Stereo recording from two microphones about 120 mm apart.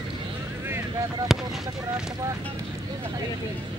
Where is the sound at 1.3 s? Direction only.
5° right (ahead or behind).